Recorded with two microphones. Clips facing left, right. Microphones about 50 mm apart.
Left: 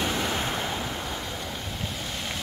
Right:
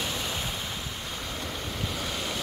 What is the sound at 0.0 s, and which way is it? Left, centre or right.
Waves, left.